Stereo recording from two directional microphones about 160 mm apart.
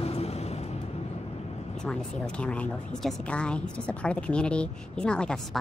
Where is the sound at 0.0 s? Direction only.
40° left (ahead or behind).